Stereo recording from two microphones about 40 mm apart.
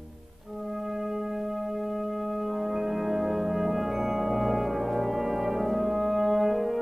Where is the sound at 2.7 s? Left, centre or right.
Centre.